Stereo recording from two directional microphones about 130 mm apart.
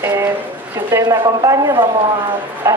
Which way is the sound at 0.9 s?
25° right (ahead or behind).